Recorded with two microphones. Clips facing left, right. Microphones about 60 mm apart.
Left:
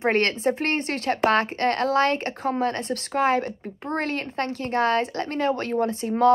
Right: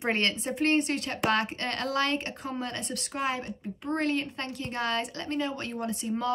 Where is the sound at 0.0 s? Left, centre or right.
Left.